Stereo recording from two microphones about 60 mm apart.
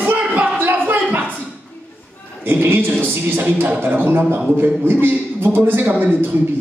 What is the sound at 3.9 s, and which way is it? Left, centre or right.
A man's voice, right.